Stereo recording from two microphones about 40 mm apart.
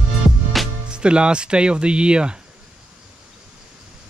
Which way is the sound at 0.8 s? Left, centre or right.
Right.